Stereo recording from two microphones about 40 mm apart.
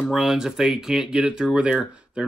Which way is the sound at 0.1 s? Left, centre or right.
Centre.